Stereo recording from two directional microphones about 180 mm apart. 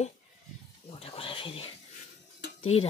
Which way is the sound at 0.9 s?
35° left (ahead or behind).